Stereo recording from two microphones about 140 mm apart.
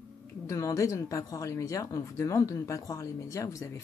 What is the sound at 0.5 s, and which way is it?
Speech, 25° left (ahead or behind).